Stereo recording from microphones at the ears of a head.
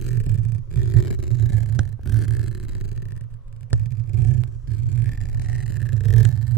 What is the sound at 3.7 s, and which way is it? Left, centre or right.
Vehicle, right.